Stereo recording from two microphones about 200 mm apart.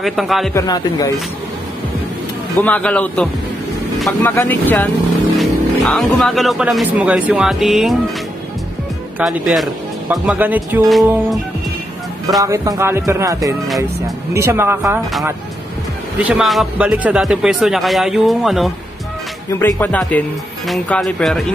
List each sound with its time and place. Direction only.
0.0 s speech: centre (ahead or behind)
0.6 s a man's voice: 20° left (ahead or behind)
2.6 s speech: 5° left (ahead or behind)
9.2 s speech: centre (ahead or behind)
12.4 s speech: 15° right (ahead or behind)
16.2 s speech: 5° right (ahead or behind)